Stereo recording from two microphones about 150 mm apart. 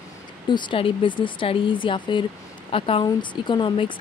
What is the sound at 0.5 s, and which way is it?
Speech, 30° left (ahead or behind).